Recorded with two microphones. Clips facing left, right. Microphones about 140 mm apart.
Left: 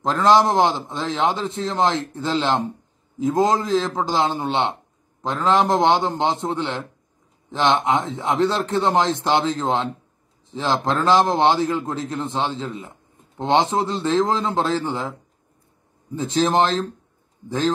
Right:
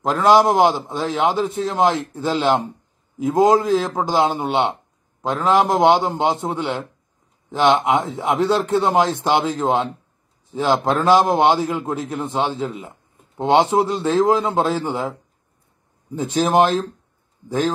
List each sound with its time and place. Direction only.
0.0 s a man's voice: 10° right (ahead or behind)
16.2 s a man's voice: 15° right (ahead or behind)